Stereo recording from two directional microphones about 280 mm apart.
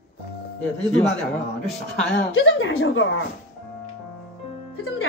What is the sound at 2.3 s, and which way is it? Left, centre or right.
Speech, left.